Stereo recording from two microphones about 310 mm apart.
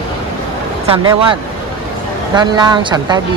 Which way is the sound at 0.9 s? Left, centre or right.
Centre.